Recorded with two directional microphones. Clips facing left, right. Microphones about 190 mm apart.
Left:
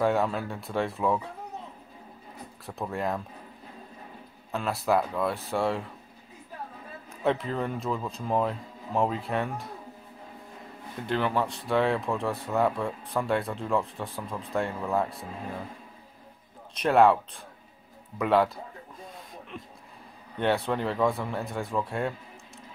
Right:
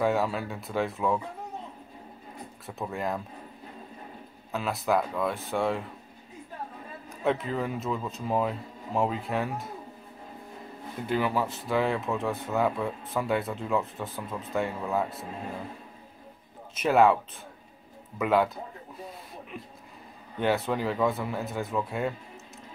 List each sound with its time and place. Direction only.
0.0 s speech: centre (ahead or behind)
2.6 s speech: centre (ahead or behind)
4.5 s speech: centre (ahead or behind)
7.1 s speech: centre (ahead or behind)
11.0 s speech: 5° right (ahead or behind)
16.7 s speech: centre (ahead or behind)
20.3 s speech: centre (ahead or behind)